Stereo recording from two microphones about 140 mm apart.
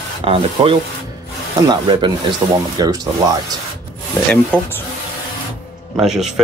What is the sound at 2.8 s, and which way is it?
Speech, 30° right (ahead or behind).